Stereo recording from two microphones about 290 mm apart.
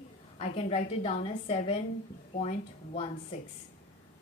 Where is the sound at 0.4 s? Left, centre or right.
Left.